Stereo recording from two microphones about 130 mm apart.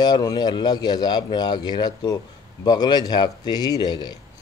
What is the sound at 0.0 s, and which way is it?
A man's voice, 30° left (ahead or behind).